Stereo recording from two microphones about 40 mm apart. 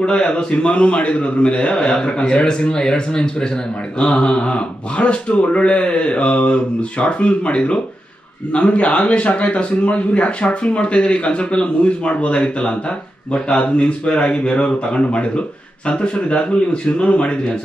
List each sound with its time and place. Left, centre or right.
0.0 s speech: left